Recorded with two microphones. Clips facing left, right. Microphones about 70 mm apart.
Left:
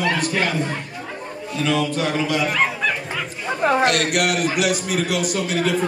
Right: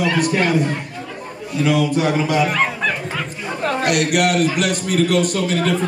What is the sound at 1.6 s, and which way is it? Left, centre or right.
Speech, centre.